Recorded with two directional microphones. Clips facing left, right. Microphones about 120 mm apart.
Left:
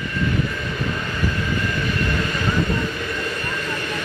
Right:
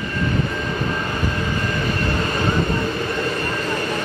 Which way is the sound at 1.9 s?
35° right (ahead or behind).